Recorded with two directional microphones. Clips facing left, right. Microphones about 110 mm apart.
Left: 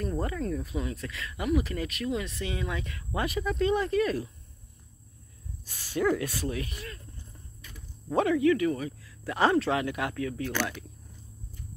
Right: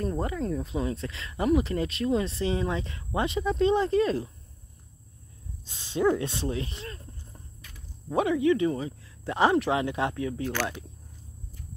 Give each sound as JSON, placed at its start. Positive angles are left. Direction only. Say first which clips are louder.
{"t": 0.0, "sound": "speech", "louder": "right 2 dB", "side_deg": -20}
{"t": 5.7, "sound": "speech", "louder": "right 2 dB", "side_deg": -20}
{"t": 8.1, "sound": "speech", "louder": "even", "side_deg": -15}